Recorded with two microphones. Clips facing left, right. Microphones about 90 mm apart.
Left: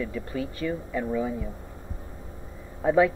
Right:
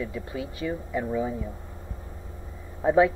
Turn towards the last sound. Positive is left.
turn(degrees=-20)  # may be behind; listen again after turning